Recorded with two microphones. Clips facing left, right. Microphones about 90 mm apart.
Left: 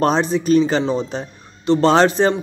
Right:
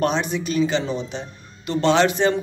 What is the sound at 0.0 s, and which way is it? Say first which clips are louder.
Speech: left 5 dB; 35° left (ahead or behind).